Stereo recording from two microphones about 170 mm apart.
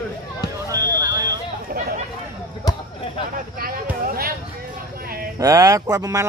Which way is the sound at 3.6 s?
55° right (ahead or behind).